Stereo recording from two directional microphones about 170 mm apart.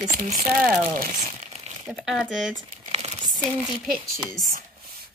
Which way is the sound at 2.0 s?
Centre (ahead or behind).